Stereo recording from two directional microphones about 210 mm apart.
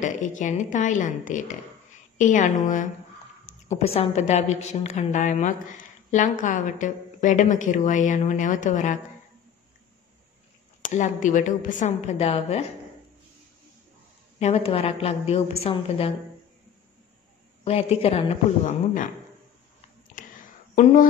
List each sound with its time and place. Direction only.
0.0 s a woman's voice: 35° left (ahead or behind)
10.8 s a woman's voice: 35° left (ahead or behind)
14.4 s a woman's voice: 30° left (ahead or behind)
17.6 s a woman's voice: 30° left (ahead or behind)
20.2 s a sound: 40° left (ahead or behind)